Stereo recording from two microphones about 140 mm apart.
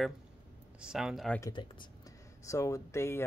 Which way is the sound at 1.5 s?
35° left (ahead or behind).